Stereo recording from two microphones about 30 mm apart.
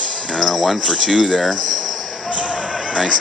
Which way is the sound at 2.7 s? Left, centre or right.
Centre.